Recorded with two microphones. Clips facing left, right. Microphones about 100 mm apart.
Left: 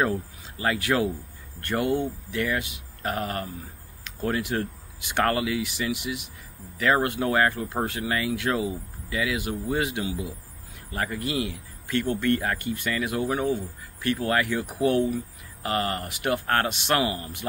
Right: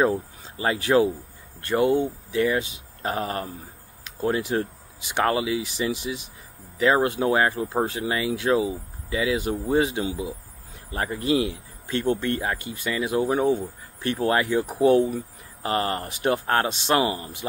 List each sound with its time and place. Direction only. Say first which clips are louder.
0.0 s speech: right 4 dB; 20° right (ahead or behind)